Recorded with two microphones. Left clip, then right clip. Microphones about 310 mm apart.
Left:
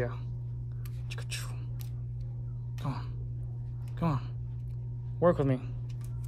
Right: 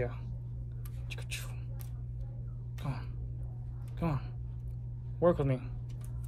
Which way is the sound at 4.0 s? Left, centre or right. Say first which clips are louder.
Left 3 dB; centre.